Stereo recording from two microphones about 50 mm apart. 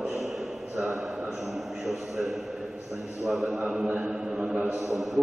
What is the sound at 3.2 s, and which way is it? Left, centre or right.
Speech, centre.